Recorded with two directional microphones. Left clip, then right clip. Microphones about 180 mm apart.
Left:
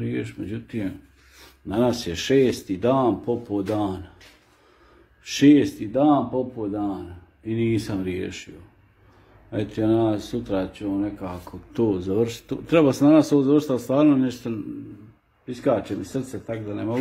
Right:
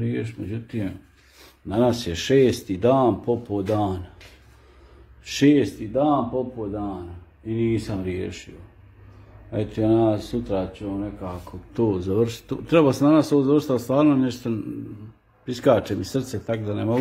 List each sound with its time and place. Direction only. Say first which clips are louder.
0.0 s speech: even; 10° left (ahead or behind)
5.2 s speech: left 2 dB; 5° left (ahead or behind)
9.5 s speech: right 1 dB; 10° left (ahead or behind)
11.9 s speech: even; centre (ahead or behind)
15.4 s a man's voice: right 4 dB; 10° right (ahead or behind)